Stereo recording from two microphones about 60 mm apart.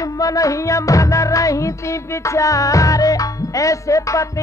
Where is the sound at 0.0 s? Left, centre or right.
Left.